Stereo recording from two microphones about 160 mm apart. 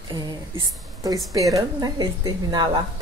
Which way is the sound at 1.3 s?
20° right (ahead or behind).